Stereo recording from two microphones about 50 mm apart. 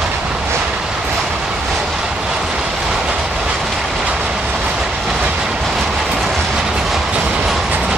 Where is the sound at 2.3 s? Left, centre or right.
Centre.